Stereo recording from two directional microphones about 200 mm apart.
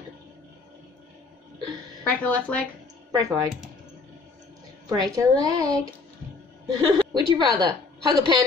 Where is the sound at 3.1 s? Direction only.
15° right (ahead or behind).